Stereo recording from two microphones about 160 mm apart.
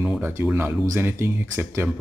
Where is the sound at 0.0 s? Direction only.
10° right (ahead or behind).